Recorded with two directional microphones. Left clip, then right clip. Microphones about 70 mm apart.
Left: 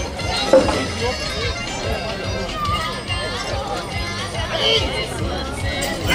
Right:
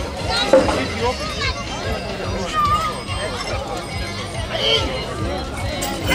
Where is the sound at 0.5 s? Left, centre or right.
Centre.